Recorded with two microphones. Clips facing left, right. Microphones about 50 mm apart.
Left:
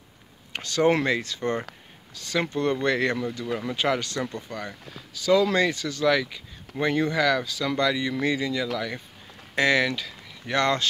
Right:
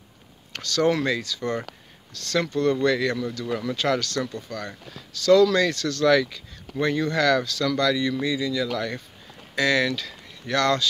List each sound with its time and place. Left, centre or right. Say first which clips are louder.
0.5 s speech: left 1 dB; left
2.1 s speech: right 2 dB; centre
2.5 s speech: right 3 dB; left
3.0 s speech: even; left
3.3 s speech: right 1 dB; centre
8.1 s speech: even; left
8.7 s speech: right 2 dB; centre
9.6 s speech: even; left